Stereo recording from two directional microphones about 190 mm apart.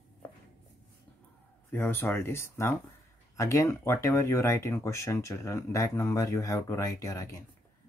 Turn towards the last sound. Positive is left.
turn(degrees=15)  # may be behind; listen again after turning